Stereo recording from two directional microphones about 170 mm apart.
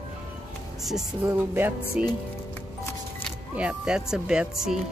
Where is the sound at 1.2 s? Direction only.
10° right (ahead or behind).